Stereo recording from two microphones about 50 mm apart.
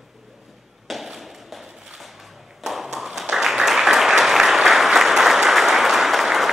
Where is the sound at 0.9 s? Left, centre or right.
Centre.